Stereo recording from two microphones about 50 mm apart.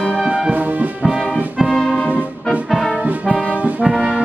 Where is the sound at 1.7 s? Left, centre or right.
Centre.